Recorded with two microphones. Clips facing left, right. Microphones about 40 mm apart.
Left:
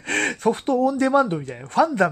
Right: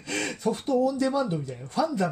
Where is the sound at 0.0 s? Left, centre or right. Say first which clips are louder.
Left 7 dB; left.